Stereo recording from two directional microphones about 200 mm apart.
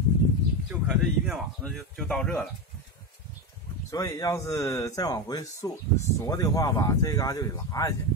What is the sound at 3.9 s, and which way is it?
Speech, 15° left (ahead or behind).